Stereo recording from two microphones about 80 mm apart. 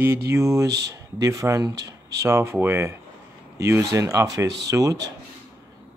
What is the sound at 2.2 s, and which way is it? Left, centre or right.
Speech, right.